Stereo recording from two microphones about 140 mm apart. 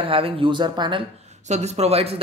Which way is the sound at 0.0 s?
40° right (ahead or behind).